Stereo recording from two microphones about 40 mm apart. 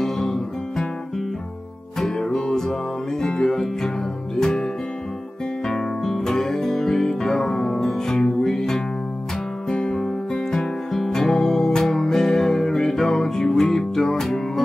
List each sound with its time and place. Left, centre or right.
0.0 s music: centre
5.7 s music: centre